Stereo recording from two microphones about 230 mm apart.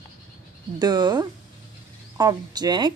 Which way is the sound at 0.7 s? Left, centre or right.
Centre.